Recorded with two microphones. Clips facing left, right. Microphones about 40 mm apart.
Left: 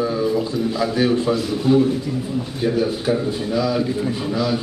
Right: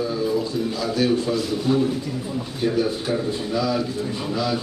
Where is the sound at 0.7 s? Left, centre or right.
Centre.